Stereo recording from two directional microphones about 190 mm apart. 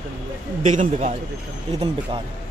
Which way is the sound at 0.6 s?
40° right (ahead or behind).